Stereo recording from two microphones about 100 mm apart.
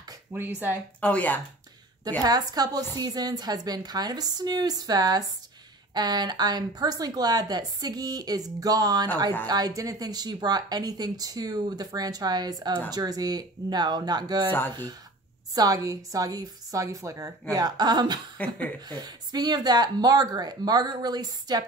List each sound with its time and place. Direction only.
0.3 s speech: 20° right (ahead or behind)
1.0 s speech: 15° left (ahead or behind)
2.2 s speech: 40° right (ahead or behind)
15.5 s speech: 35° right (ahead or behind)